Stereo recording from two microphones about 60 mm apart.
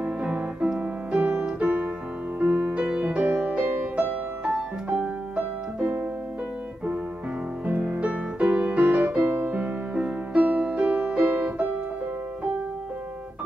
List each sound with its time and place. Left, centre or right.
0.0 s music: centre
1.6 s piano: right
2.4 s music: right
8.0 s music: right
9.6 s music: centre